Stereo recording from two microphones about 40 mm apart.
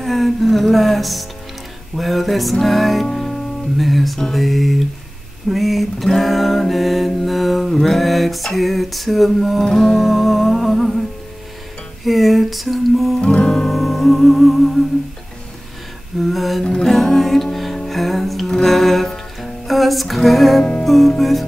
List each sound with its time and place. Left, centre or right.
0.0 s music: centre
3.1 s music: centre
3.7 s music: centre
9.7 s music: centre
9.9 s music: centre
13.2 s music: left
13.7 s music: centre
16.2 s music: centre